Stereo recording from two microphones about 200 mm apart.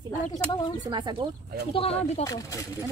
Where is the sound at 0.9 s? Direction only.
20° right (ahead or behind).